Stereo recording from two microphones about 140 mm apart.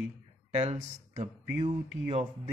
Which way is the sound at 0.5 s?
55° right (ahead or behind).